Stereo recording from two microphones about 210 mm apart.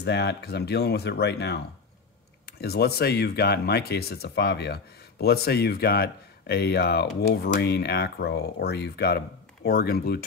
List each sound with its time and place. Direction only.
0.0 s speech: 55° left (ahead or behind)